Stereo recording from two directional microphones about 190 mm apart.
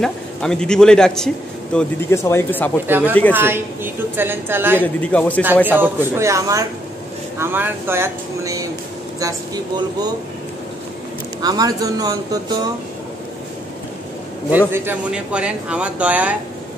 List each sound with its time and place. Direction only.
0.0 s a man's voice: 5° left (ahead or behind)
2.9 s speech: 10° right (ahead or behind)
4.8 s a man's voice: 5° left (ahead or behind)
5.7 s speech: 10° right (ahead or behind)
11.4 s speech: 20° right (ahead or behind)
14.7 s speech: 10° right (ahead or behind)